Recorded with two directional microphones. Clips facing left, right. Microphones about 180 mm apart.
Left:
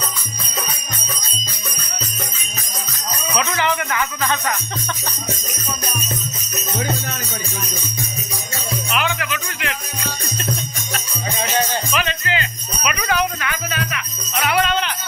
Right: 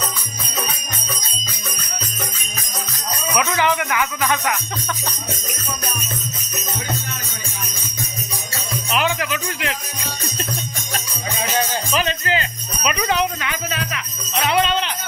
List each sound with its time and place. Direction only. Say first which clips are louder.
3.3 s speech: right 2 dB; 15° right (ahead or behind)
8.9 s music: right 3 dB; 35° right (ahead or behind)
11.9 s jingle bell: right 2 dB; 40° right (ahead or behind)
13.0 s jingle bell: even; 25° right (ahead or behind)